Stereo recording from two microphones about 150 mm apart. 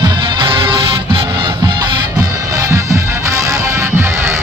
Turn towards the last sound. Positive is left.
turn(degrees=-15)  # may be behind; listen again after turning